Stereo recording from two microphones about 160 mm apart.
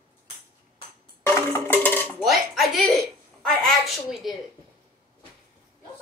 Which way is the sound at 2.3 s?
Centre (ahead or behind).